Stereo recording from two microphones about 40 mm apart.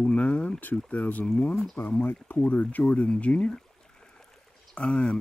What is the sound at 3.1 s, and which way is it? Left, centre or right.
Speech, left.